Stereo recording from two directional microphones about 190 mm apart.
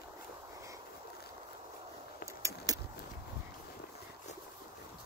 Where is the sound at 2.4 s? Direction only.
15° right (ahead or behind).